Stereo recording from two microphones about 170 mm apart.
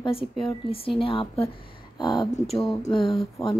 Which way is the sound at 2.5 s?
Centre (ahead or behind).